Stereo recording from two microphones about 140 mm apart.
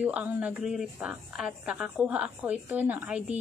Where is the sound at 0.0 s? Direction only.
10° right (ahead or behind).